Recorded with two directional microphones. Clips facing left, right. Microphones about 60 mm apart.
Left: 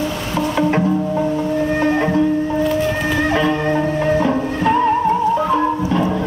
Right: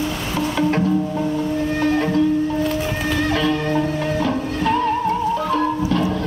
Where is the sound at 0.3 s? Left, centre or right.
Centre.